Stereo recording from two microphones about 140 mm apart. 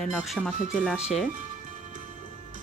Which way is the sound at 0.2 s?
5° left (ahead or behind).